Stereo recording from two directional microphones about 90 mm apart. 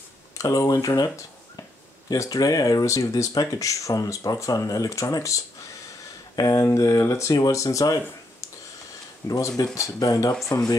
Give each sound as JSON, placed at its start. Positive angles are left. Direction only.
{"t": 0.4, "sound": "speech", "side_deg": 40}
{"t": 9.2, "sound": "speech", "side_deg": 45}